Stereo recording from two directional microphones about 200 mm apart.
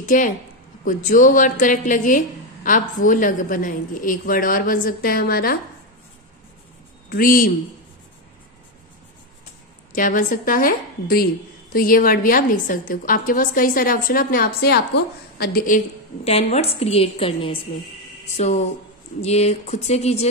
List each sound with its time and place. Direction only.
0.0 s a woman's voice: 40° left (ahead or behind)
7.1 s a woman's voice: 45° left (ahead or behind)
9.9 s a woman's voice: 40° left (ahead or behind)
16.3 s a woman's voice: 30° left (ahead or behind)